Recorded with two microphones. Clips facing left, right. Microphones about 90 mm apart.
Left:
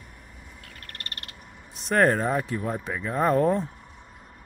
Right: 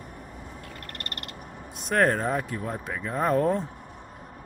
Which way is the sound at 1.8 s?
Centre (ahead or behind).